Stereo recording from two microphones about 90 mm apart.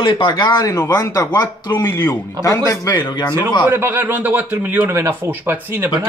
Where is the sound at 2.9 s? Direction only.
55° left (ahead or behind).